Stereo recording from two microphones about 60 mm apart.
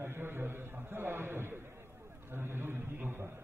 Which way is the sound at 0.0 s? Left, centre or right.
Right.